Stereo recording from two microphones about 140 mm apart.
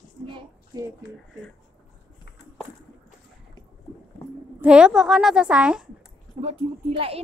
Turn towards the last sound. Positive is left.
turn(degrees=-45)  # may be behind; listen again after turning